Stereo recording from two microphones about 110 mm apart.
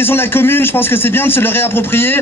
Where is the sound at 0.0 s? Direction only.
20° left (ahead or behind).